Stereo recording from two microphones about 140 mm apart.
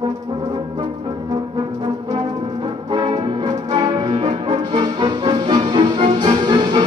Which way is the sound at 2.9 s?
35° right (ahead or behind).